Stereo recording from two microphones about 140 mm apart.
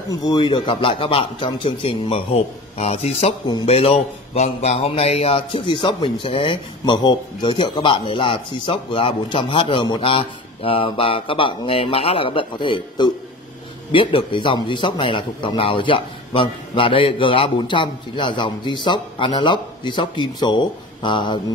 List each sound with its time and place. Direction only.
0.1 s a man's voice: 35° left (ahead or behind)